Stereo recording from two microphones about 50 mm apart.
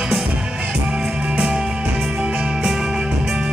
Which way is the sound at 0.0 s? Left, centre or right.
Centre.